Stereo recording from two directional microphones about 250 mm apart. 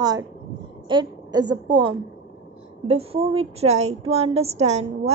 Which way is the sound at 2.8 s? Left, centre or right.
Right.